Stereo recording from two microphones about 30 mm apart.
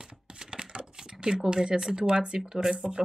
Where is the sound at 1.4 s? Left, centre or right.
Right.